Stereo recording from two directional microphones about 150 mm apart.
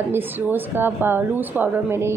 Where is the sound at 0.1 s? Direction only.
15° right (ahead or behind).